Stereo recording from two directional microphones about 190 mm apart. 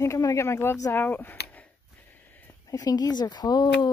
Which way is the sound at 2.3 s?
15° left (ahead or behind).